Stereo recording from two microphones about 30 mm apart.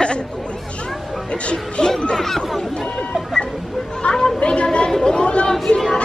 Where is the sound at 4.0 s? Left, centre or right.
Left.